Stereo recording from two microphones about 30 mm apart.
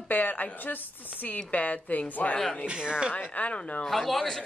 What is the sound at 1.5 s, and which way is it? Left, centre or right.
Speech, left.